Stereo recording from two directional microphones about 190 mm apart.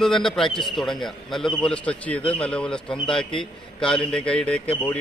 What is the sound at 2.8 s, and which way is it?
Speech, 25° left (ahead or behind).